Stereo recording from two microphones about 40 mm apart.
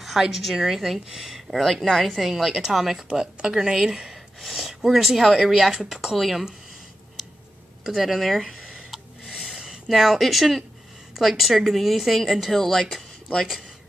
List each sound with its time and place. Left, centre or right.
0.3 s speech: centre
2.2 s speech: centre
4.1 s speech: centre
7.2 s tick-tock: centre
7.8 s speech: centre
9.5 s a sound: centre
9.8 s speech: centre
12.5 s speech: centre